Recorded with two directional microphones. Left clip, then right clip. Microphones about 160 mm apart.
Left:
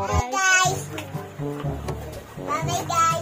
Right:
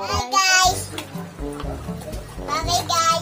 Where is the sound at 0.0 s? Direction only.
Centre (ahead or behind).